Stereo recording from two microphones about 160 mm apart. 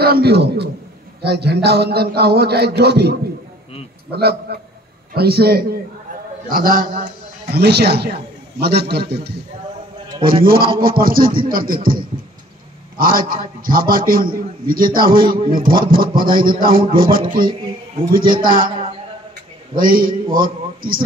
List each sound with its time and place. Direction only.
0.0 s a man's voice: 80° right
6.5 s a man's voice: 65° right (ahead or behind)
7.5 s a man's voice: 90° right
10.4 s a man's voice: 65° right (ahead or behind)
19.7 s a man's voice: 60° right (ahead or behind)